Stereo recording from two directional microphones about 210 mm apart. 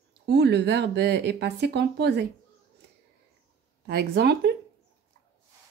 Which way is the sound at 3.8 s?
50° right (ahead or behind).